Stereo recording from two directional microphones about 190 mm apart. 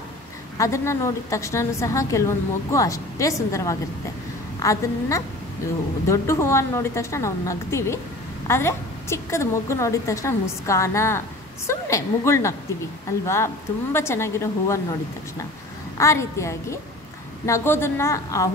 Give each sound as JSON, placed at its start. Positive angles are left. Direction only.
{"t": 0.6, "sound": "a woman's voice", "side_deg": 15}
{"t": 13.9, "sound": "a woman's voice", "side_deg": 15}
{"t": 16.0, "sound": "a woman's voice", "side_deg": 15}